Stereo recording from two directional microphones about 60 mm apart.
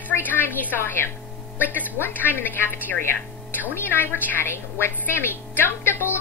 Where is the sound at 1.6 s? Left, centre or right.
Right.